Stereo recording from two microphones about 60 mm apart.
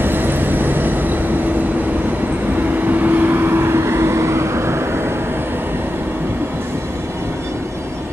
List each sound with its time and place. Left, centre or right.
0.0 s vehicle: right
2.8 s vehicle: right